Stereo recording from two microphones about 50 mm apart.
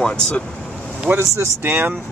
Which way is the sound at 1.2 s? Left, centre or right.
Right.